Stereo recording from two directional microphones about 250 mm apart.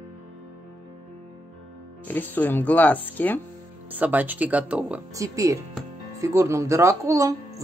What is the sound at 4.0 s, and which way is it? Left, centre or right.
Speech, centre.